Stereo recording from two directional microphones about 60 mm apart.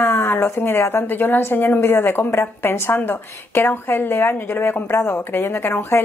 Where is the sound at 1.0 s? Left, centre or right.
Left.